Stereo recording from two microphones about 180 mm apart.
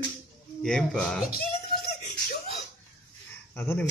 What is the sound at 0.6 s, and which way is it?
Speech, 5° left (ahead or behind).